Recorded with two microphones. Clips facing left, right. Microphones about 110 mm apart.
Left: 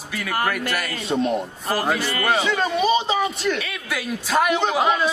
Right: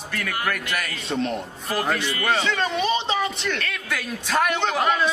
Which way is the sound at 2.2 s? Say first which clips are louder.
Left 2 dB; 5° left (ahead or behind).